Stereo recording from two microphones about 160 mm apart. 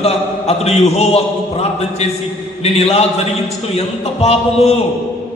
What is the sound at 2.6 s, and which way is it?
A man's voice, 40° left (ahead or behind).